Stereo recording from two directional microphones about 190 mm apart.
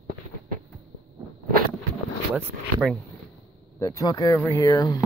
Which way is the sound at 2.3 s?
5° right (ahead or behind).